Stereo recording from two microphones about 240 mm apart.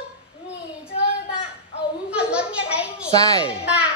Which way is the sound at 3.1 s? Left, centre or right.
Centre.